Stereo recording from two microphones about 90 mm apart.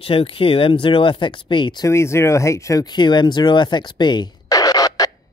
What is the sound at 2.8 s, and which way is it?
Speech, 55° left (ahead or behind).